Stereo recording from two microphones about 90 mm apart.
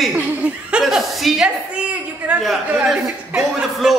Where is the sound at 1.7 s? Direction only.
15° right (ahead or behind).